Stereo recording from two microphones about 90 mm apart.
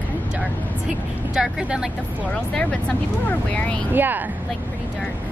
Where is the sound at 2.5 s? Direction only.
15° left (ahead or behind).